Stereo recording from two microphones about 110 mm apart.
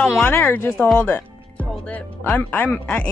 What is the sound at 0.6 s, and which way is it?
Speech, 5° left (ahead or behind).